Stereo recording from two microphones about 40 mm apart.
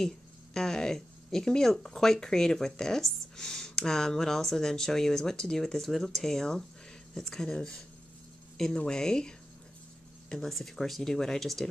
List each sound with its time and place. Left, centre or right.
0.6 s speech: centre
10.3 s speech: centre